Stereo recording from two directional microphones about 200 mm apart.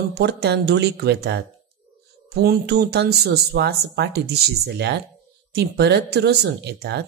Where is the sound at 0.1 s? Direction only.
55° right (ahead or behind).